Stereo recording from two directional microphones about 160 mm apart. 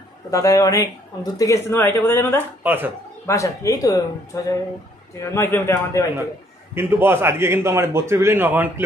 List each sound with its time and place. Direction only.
0.3 s speech: 20° left (ahead or behind)
2.6 s a man's voice: 10° right (ahead or behind)
3.3 s speech: 20° left (ahead or behind)
5.2 s speech: 20° left (ahead or behind)
6.7 s a man's voice: 15° right (ahead or behind)